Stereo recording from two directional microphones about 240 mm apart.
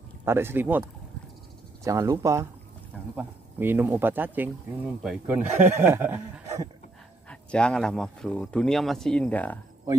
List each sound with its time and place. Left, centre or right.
0.2 s speech: centre
1.9 s speech: centre
7.2 s speech: centre